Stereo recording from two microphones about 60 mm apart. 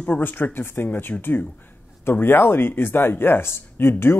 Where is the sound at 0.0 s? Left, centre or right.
Left.